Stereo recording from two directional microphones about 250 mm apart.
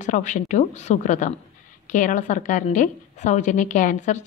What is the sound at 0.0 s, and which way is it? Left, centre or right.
A woman's voice, left.